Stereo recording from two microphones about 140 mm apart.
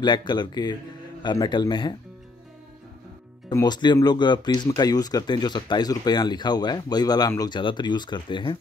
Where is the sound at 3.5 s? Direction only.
30° left (ahead or behind).